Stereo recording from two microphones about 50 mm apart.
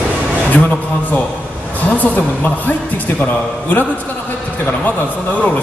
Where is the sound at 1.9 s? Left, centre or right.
Left.